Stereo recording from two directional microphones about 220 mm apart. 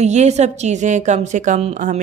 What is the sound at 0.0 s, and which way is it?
A woman's voice, 30° right (ahead or behind).